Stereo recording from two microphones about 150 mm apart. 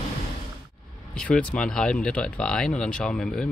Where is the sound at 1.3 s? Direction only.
5° left (ahead or behind).